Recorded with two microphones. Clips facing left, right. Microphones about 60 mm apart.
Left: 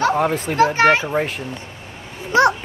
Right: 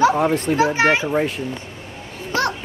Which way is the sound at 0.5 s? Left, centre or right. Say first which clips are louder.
Left 5 dB; centre.